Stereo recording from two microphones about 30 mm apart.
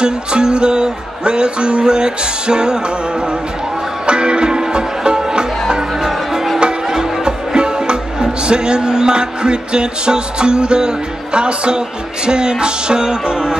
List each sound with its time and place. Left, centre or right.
0.0 s music: right